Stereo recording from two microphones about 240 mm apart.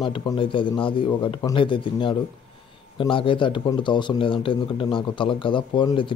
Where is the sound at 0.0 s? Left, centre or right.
Left.